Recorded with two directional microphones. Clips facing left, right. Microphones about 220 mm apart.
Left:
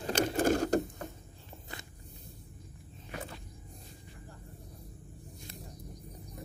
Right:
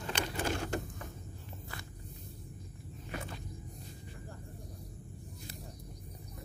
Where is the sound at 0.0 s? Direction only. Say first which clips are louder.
Left 8 dB; 45° left (ahead or behind).